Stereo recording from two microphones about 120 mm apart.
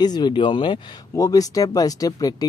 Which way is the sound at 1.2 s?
30° left (ahead or behind).